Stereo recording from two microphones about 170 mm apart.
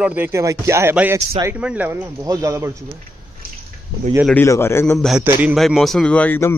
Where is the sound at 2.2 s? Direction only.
20° right (ahead or behind).